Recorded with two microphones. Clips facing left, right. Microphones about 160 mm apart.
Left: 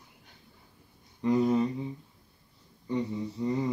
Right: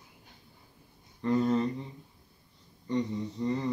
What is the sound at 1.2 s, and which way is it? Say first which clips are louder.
Mantra: left 2 dB; 10° left (ahead or behind).